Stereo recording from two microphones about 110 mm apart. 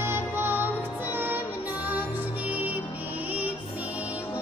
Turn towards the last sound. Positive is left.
turn(degrees=-15)  # may be behind; listen again after turning